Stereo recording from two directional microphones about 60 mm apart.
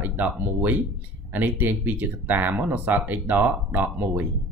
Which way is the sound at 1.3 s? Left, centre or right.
Right.